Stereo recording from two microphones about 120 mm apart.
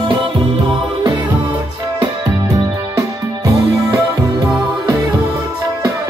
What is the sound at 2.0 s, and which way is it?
Music, 30° right (ahead or behind).